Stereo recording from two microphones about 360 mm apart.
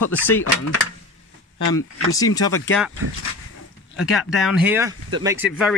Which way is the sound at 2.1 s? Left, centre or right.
Centre.